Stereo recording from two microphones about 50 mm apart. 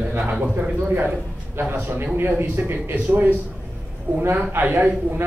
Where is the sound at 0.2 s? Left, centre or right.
Right.